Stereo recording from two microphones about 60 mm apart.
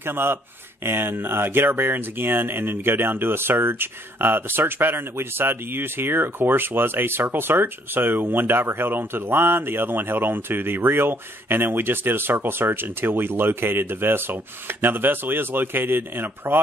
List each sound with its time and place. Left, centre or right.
0.0 s speech: right